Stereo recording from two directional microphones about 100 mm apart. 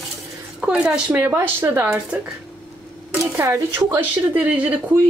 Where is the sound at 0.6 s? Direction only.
10° right (ahead or behind).